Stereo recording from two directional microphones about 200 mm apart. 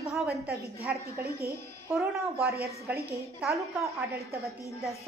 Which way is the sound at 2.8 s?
10° right (ahead or behind).